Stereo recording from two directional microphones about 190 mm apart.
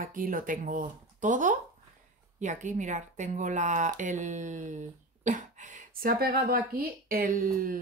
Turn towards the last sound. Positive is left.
turn(degrees=-50)  # may be behind; listen again after turning